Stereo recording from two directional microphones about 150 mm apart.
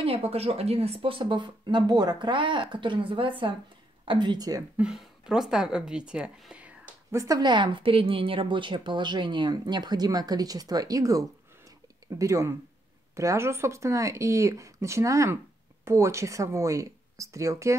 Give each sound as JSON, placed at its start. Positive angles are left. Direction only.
{"t": 0.0, "sound": "a woman's voice", "side_deg": -40}
{"t": 4.7, "sound": "a woman's voice", "side_deg": -5}
{"t": 7.2, "sound": "a woman's voice", "side_deg": -25}